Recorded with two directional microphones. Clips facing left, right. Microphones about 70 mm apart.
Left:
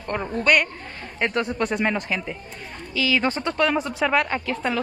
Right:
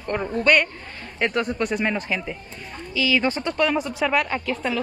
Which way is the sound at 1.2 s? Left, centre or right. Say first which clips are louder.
Even; left.